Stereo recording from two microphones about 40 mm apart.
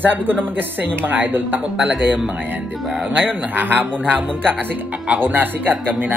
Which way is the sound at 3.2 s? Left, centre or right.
Right.